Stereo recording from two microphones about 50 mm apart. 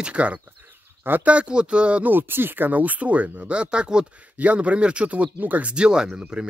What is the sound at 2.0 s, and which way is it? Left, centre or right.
Speech, right.